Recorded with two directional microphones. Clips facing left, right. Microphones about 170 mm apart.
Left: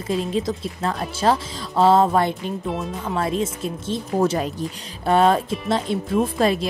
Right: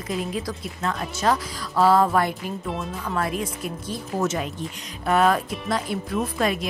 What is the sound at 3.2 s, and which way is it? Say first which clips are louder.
Speech: left 4 dB; 25° left (ahead or behind).